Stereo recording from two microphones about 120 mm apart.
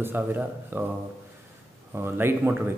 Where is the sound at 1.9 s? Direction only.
20° right (ahead or behind).